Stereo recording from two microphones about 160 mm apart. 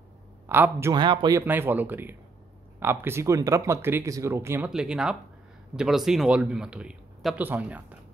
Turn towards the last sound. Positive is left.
turn(degrees=-10)  # may be behind; listen again after turning